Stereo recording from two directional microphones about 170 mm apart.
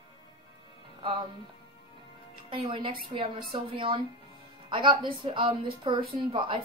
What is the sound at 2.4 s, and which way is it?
A woman's voice, 30° right (ahead or behind).